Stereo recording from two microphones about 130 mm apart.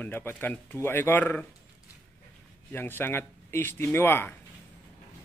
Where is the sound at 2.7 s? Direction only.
15° left (ahead or behind).